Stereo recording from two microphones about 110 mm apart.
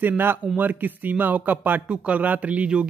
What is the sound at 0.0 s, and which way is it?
A man's voice, 20° right (ahead or behind).